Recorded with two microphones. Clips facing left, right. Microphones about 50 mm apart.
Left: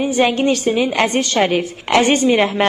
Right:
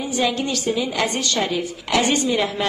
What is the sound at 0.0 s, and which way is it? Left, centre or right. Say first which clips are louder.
A woman's voice: left 7 dB; left.